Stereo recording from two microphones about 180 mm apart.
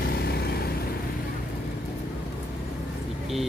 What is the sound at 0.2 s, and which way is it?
Vehicle, 60° left (ahead or behind).